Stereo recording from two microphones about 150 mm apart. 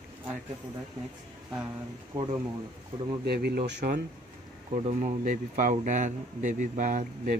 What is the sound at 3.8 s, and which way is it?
Speech, 60° right (ahead or behind).